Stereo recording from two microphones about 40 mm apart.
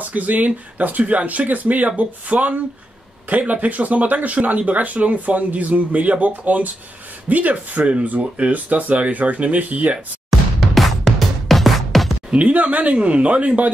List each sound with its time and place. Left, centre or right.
0.0 s speech: right
10.7 s music: centre
12.4 s speech: right